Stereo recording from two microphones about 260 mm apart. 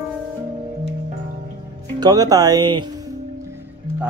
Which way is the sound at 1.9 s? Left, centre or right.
Centre.